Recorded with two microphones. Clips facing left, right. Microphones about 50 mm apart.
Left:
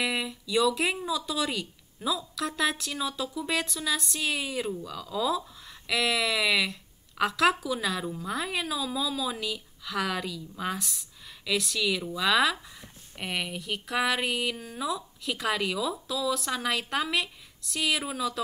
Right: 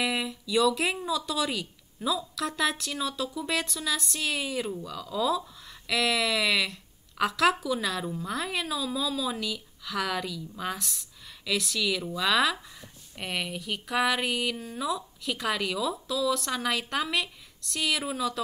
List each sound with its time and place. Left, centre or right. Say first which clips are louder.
0.0 s speech: right 1 dB; centre